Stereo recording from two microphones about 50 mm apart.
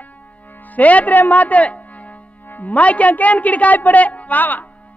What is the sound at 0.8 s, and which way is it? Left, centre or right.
Speech, left.